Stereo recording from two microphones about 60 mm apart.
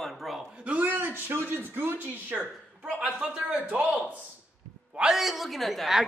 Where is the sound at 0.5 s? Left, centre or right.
Right.